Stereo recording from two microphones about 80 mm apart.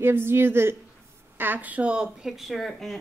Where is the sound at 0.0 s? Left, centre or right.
Right.